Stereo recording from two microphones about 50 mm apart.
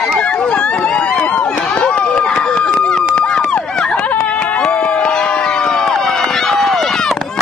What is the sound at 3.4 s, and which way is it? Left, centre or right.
Run, centre.